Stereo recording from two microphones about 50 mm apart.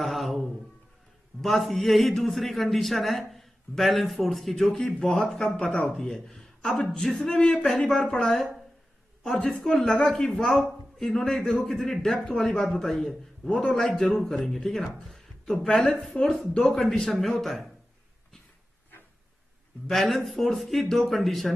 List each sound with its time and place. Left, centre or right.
0.0 s a sound: centre
1.4 s a man's voice: centre
5.6 s a man's voice: centre
13.5 s a man's voice: centre
19.9 s a man's voice: centre